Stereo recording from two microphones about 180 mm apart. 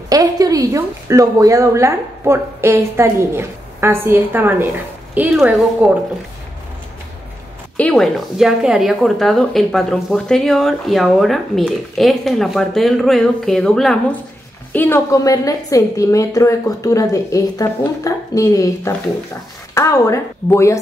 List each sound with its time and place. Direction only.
0.1 s a woman's voice: 20° right (ahead or behind)
7.7 s a woman's voice: 5° left (ahead or behind)